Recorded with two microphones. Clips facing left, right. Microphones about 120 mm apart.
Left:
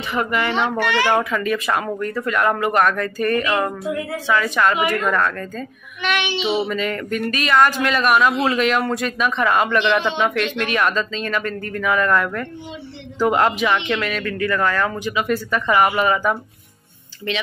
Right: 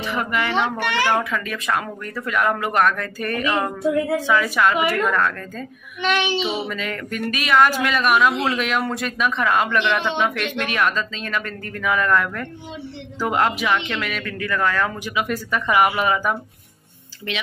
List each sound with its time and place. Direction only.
0.1 s speech: centre (ahead or behind)
0.9 s speech: 15° left (ahead or behind)
6.0 s child singing: 35° right (ahead or behind)
6.7 s speech: centre (ahead or behind)